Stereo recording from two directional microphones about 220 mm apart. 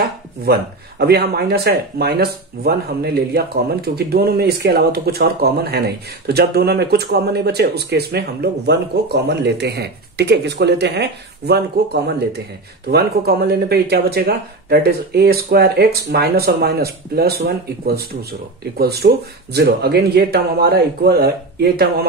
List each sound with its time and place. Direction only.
0.0 s speech: 45° right (ahead or behind)
18.6 s speech: 45° right (ahead or behind)